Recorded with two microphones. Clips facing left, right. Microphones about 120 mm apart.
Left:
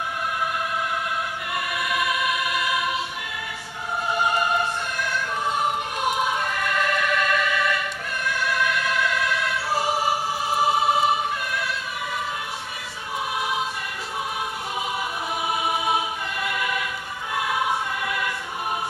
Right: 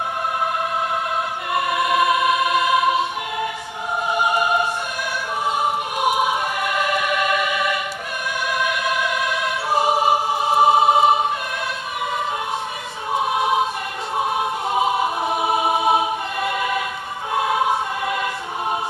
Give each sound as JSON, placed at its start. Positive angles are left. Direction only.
{"t": 1.5, "sound": "choir", "side_deg": -25}
{"t": 4.1, "sound": "opera", "side_deg": -15}
{"t": 5.6, "sound": "choir", "side_deg": -15}
{"t": 13.1, "sound": "choir", "side_deg": -25}
{"t": 14.7, "sound": "choir", "side_deg": -25}